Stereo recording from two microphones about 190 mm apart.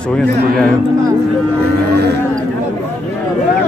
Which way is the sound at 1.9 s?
60° right (ahead or behind).